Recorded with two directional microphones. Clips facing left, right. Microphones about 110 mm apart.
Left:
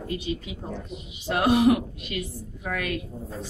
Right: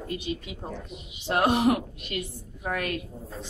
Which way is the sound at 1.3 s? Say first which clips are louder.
Left 2 dB; 30° right (ahead or behind).